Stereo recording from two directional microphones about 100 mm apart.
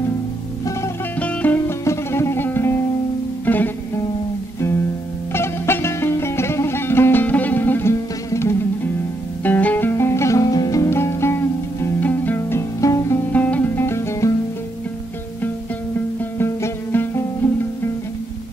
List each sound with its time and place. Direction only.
1.2 s music: 15° left (ahead or behind)
1.9 s music: 25° left (ahead or behind)
5.3 s music: 25° left (ahead or behind)
10.4 s music: 40° left (ahead or behind)
13.3 s music: 15° left (ahead or behind)
16.3 s music: 25° left (ahead or behind)